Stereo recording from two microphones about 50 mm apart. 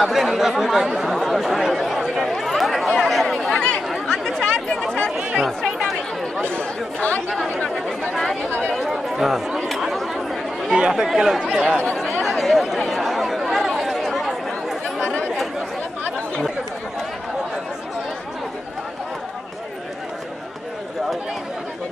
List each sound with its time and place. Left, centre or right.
0.0 s speech: centre
2.3 s chatter: centre
3.5 s chatter: centre
7.0 s speech: left
7.2 s speech: centre
8.1 s chatter: centre
10.7 s speech: centre
12.2 s chatter: centre